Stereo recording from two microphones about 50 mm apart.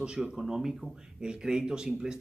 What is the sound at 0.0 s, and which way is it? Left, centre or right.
A man's voice, centre.